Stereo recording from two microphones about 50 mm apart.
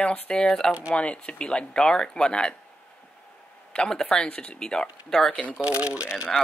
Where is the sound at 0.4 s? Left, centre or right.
Centre.